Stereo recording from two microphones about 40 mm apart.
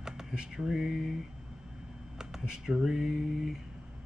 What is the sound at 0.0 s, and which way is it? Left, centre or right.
Speech, centre.